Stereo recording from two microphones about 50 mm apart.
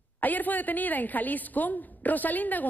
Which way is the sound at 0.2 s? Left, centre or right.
Left.